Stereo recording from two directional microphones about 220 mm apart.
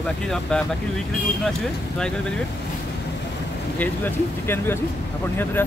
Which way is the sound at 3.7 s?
10° left (ahead or behind).